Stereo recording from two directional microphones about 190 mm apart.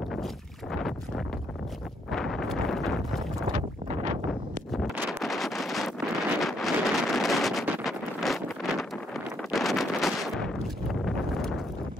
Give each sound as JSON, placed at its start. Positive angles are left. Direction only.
{"t": 0.1, "sound": "boat", "side_deg": 0}
{"t": 2.0, "sound": "wind noise", "side_deg": 0}
{"t": 3.5, "sound": "wind noise", "side_deg": -40}
{"t": 4.3, "sound": "wind noise", "side_deg": 0}